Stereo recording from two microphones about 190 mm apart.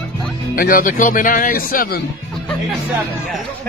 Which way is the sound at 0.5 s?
50° left (ahead or behind).